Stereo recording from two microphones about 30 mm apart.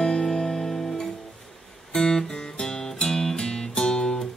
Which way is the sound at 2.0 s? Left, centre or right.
Left.